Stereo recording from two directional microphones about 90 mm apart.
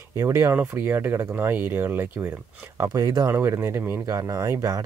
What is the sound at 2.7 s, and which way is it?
Speech, 40° right (ahead or behind).